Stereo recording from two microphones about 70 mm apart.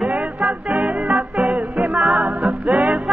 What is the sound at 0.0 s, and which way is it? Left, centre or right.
Music, centre.